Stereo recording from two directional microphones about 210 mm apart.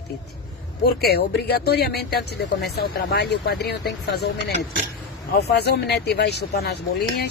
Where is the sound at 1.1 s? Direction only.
50° left (ahead or behind).